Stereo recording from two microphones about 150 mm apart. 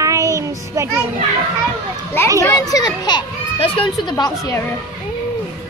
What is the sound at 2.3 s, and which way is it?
A child's voice, 20° left (ahead or behind).